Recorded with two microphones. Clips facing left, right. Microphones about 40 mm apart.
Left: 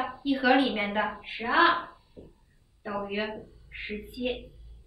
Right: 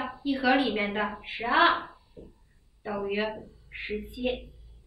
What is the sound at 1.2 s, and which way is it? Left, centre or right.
Speech, centre.